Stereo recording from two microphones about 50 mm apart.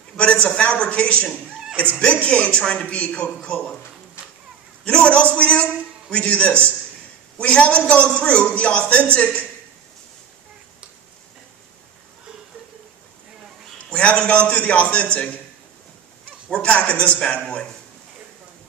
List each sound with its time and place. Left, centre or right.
0.2 s a man's voice: left
4.8 s a man's voice: left
13.8 s a man's voice: left
16.4 s a man's voice: left